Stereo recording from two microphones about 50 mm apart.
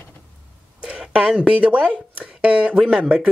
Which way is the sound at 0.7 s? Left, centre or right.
Right.